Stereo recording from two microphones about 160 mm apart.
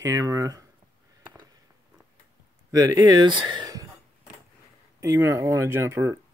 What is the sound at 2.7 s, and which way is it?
Speech, 20° right (ahead or behind).